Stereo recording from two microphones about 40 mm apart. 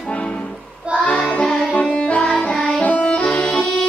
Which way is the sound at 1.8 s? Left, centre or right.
Left.